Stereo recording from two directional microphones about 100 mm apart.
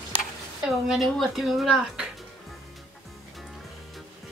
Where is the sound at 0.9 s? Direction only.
Centre (ahead or behind).